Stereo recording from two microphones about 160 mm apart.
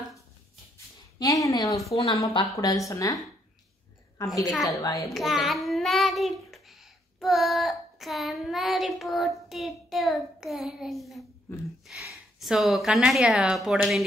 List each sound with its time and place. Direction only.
1.2 s a woman's voice: 20° left (ahead or behind)
4.6 s a woman's voice: 20° left (ahead or behind)
5.1 s child singing: centre (ahead or behind)
9.5 s speech: centre (ahead or behind)